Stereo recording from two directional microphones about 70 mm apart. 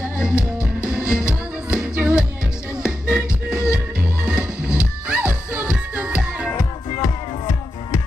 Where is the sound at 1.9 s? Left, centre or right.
Right.